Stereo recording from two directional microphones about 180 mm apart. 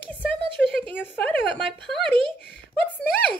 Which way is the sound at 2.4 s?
65° left (ahead or behind).